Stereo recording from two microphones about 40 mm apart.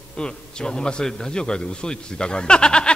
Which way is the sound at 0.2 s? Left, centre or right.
Left.